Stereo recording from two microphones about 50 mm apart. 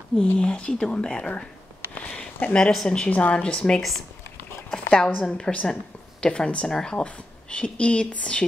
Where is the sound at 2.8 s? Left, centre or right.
Left.